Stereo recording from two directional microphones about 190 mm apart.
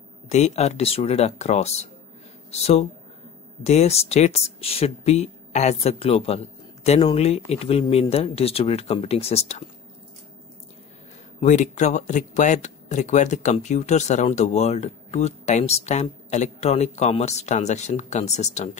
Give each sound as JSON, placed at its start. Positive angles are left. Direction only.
{"t": 0.3, "sound": "speech", "side_deg": 35}
{"t": 11.3, "sound": "speech", "side_deg": 40}